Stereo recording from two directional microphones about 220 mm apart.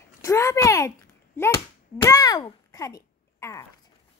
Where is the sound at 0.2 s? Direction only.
15° left (ahead or behind).